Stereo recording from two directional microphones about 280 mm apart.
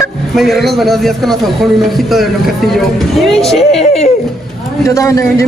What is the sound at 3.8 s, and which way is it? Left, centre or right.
Speech, left.